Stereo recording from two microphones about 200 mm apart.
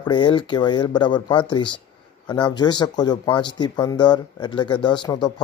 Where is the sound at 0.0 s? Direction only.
25° left (ahead or behind).